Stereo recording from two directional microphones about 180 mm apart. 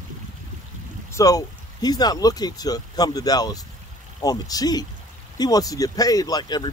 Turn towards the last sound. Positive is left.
turn(degrees=25)  # may be behind; listen again after turning